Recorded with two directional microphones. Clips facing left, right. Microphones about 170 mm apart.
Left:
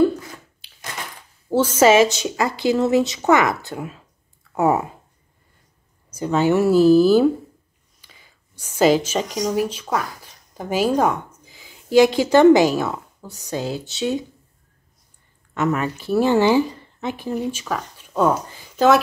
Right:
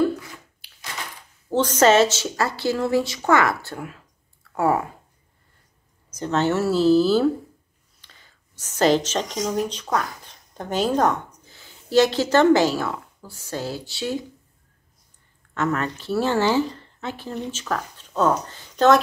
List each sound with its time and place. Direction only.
1.5 s a woman's voice: 10° left (ahead or behind)
6.1 s a woman's voice: 10° left (ahead or behind)
15.5 s speech: 15° left (ahead or behind)